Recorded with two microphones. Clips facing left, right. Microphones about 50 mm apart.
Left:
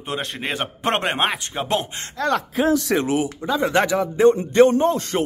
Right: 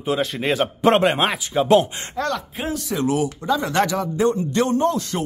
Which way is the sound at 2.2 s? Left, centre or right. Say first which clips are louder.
Left 1 dB; centre.